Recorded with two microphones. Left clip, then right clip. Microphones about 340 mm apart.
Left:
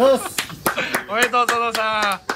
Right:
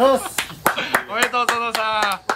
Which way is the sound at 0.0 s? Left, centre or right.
Centre.